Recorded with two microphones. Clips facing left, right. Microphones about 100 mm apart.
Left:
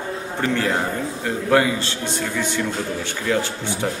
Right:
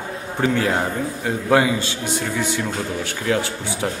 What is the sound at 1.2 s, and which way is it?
A man's voice, 15° right (ahead or behind).